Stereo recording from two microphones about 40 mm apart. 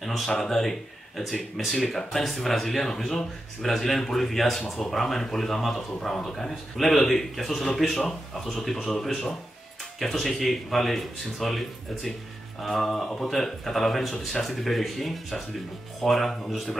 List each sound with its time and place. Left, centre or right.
0.0 s a sound: centre
0.4 s speech: centre
5.9 s speech: centre